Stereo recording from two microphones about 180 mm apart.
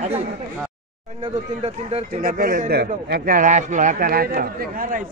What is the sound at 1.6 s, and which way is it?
Speech, 35° right (ahead or behind).